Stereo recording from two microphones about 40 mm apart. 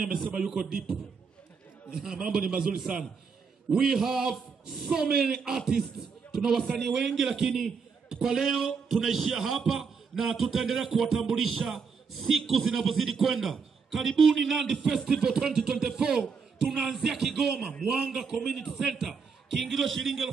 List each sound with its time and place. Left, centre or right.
2.0 s a man's voice: centre
15.0 s a man's voice: centre
19.0 s a man's voice: centre